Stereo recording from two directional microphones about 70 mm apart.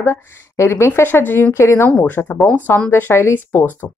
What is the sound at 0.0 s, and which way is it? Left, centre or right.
A woman's voice, left.